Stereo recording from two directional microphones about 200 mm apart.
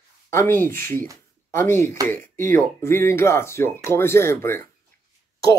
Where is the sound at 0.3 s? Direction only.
10° left (ahead or behind).